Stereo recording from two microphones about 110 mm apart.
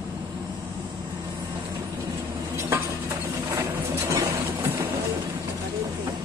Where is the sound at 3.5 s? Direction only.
30° right (ahead or behind).